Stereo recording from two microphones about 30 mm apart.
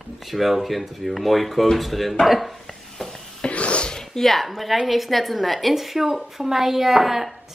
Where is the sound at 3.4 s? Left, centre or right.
Left.